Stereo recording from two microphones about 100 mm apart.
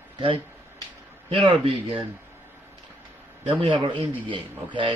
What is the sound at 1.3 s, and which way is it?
Speech, 65° right (ahead or behind).